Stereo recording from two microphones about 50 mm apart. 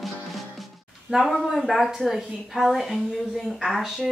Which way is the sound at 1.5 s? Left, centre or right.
Centre.